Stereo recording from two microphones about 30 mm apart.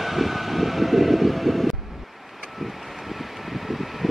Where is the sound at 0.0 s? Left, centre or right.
Centre.